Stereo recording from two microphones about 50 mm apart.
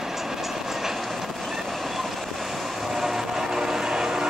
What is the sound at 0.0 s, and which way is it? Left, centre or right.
Train, centre.